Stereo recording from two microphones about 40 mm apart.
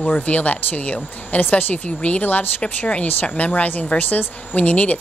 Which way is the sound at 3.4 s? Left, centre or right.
Left.